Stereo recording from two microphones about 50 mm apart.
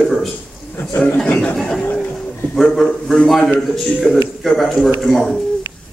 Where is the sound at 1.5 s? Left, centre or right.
Centre.